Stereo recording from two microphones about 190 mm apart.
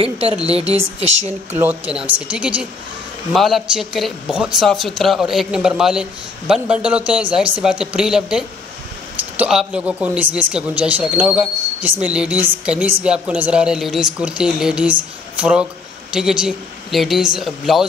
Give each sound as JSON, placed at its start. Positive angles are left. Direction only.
{"t": 0.0, "sound": "a woman's voice", "side_deg": -30}
{"t": 1.9, "sound": "speech", "side_deg": -5}
{"t": 16.1, "sound": "speech", "side_deg": -5}